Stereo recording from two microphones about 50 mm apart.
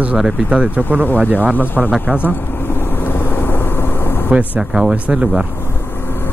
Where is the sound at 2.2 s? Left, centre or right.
Left.